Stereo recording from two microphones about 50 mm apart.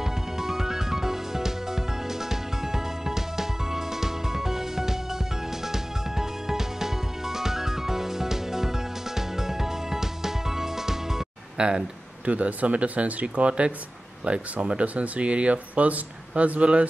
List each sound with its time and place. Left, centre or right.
0.0 s music: centre
12.3 s speech: right